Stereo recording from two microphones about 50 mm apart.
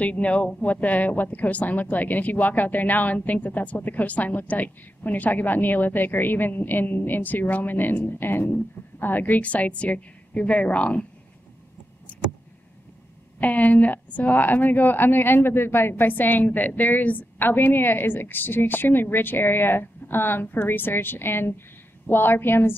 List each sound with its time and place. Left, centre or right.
0.0 s a woman's voice: left
12.1 s vehicle: left
13.4 s a woman's voice: left